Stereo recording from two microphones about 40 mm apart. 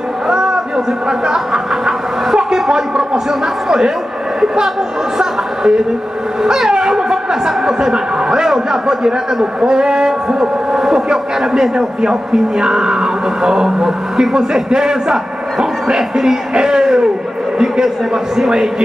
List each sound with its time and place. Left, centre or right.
0.3 s a sound: centre
1.2 s chuckle: centre
3.6 s speech: centre
5.2 s a woman's voice: centre